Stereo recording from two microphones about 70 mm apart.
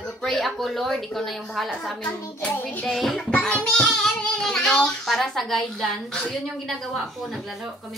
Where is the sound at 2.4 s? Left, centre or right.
Centre.